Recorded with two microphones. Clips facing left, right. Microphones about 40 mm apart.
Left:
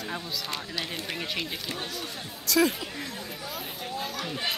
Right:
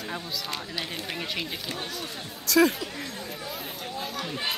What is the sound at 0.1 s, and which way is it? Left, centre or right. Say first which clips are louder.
Speech: right 1 dB; centre.